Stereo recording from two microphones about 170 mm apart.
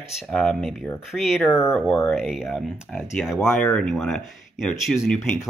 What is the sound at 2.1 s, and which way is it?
Speech, centre (ahead or behind).